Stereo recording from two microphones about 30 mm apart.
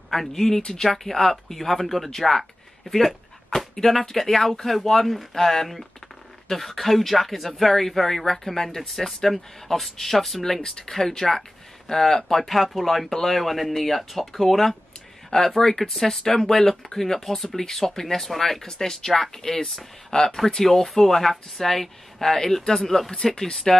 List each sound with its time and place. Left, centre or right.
0.1 s speech: centre
2.9 s dog: centre
4.1 s speech: centre
20.1 s speech: left
20.5 s speech: centre
23.1 s speech: left